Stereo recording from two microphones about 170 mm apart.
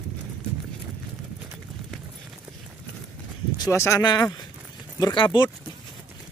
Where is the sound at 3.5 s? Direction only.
20° left (ahead or behind).